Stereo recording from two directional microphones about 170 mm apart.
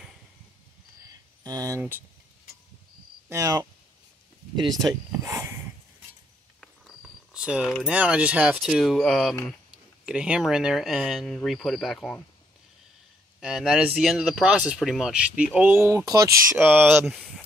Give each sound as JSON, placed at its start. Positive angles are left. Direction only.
{"t": 1.0, "sound": "a sound", "side_deg": -20}
{"t": 1.8, "sound": "speech", "side_deg": -10}
{"t": 3.3, "sound": "speech", "side_deg": -20}
{"t": 6.6, "sound": "cricket", "side_deg": 0}
{"t": 7.7, "sound": "speech", "side_deg": -5}
{"t": 10.0, "sound": "speech", "side_deg": -5}
{"t": 13.4, "sound": "speech", "side_deg": -5}